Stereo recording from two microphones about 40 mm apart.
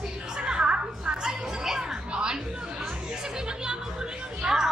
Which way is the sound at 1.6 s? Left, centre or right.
Centre.